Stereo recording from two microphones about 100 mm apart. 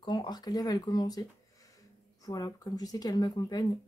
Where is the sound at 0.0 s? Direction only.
45° left (ahead or behind).